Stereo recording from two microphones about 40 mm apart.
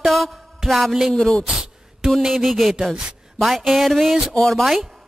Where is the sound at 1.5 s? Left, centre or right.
Centre.